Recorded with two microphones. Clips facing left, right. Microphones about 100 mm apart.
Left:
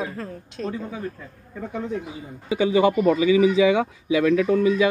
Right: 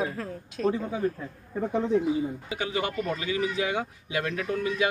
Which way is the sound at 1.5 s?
25° right (ahead or behind).